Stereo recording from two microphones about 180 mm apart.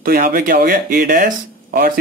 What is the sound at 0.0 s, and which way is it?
Speech, 55° right (ahead or behind).